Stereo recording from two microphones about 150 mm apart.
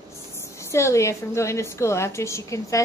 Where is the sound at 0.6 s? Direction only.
20° left (ahead or behind).